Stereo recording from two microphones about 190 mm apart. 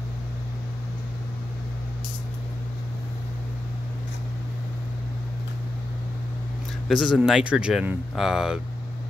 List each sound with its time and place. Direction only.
6.9 s speech: centre (ahead or behind)